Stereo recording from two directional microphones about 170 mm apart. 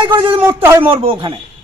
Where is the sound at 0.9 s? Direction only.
30° right (ahead or behind).